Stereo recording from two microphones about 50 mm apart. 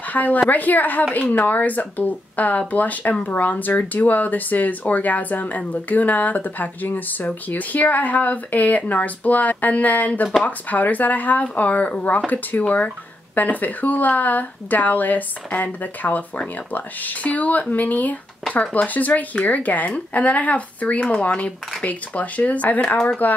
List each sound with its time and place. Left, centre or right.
0.1 s a woman's voice: left